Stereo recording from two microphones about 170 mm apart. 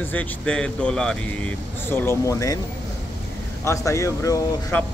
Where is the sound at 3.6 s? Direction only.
15° left (ahead or behind).